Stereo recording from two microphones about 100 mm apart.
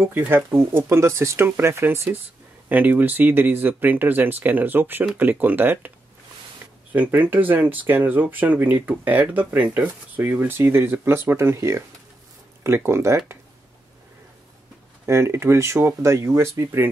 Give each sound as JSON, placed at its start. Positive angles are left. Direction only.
{"t": 0.0, "sound": "speech", "side_deg": -20}
{"t": 6.9, "sound": "speech", "side_deg": -15}
{"t": 15.0, "sound": "speech", "side_deg": -30}